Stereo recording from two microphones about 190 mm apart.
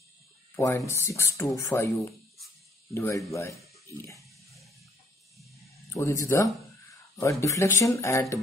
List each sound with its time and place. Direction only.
0.6 s speech: 15° left (ahead or behind)
5.9 s speech: 15° left (ahead or behind)